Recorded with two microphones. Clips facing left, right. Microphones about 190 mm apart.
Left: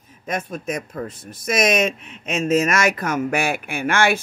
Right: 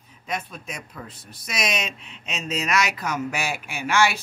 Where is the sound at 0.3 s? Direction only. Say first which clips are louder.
Left 7 dB; 45° left (ahead or behind).